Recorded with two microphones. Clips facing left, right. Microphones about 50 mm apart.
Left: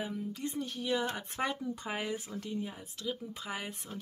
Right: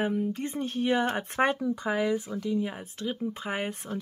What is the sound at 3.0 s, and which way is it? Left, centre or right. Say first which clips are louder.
Speech: right 6 dB; right.